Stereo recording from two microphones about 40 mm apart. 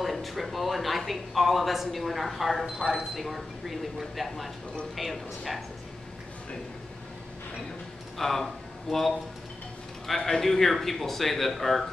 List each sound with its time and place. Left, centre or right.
0.0 s speech: centre
2.6 s speech: centre
3.2 s speech: centre
8.2 s speech: centre
10.0 s speech: centre